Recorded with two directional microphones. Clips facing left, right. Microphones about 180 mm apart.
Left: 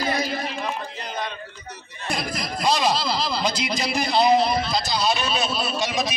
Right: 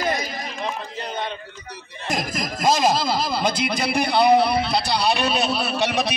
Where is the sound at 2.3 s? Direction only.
45° right (ahead or behind).